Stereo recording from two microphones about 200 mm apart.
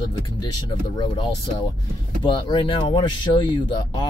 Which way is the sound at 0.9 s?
25° left (ahead or behind).